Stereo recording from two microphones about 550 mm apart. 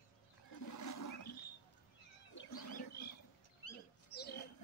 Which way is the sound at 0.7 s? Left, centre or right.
Left.